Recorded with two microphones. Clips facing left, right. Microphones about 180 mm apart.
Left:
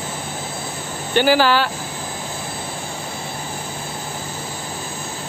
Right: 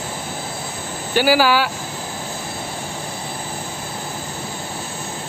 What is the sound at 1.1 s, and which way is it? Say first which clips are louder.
Speech: even; 10° right (ahead or behind).